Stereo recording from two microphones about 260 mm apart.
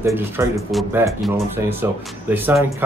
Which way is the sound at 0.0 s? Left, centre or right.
Centre.